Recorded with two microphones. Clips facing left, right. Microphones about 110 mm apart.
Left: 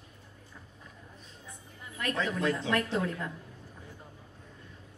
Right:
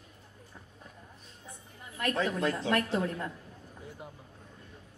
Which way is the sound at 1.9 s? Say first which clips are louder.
Right 2 dB; 40° right (ahead or behind).